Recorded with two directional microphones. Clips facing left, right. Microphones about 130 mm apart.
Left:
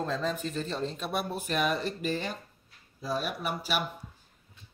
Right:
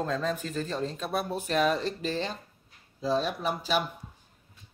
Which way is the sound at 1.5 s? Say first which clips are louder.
Right 4 dB; 30° right (ahead or behind).